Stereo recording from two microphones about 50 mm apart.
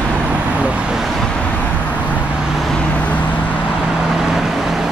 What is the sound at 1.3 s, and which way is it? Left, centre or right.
Vehicle, left.